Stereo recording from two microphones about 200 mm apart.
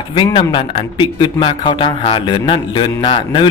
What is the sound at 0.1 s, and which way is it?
Speech, 25° left (ahead or behind).